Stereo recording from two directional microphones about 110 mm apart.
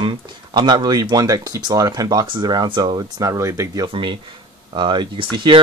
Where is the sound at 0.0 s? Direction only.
45° right (ahead or behind); by 3.8 s 25° right (ahead or behind).